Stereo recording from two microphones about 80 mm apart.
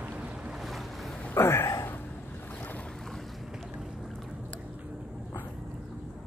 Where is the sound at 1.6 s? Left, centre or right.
Left.